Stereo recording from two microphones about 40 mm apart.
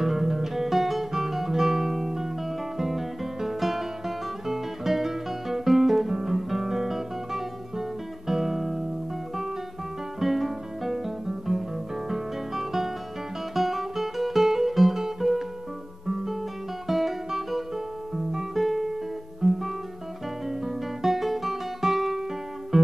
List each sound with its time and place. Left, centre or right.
0.0 s guitar: centre
10.2 s guitar: centre
13.6 s music: centre
16.8 s guitar: centre